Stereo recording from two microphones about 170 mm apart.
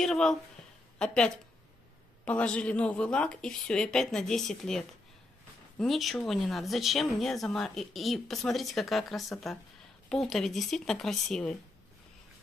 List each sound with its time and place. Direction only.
0.0 s speech: 5° left (ahead or behind)